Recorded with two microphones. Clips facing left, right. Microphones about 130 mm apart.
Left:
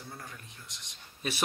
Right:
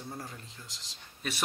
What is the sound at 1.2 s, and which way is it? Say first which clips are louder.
Speech: left 2 dB; 10° left (ahead or behind).